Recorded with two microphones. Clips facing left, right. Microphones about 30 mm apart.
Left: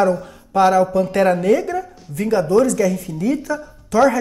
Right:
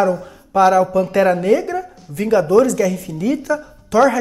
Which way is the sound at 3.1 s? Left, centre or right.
Centre.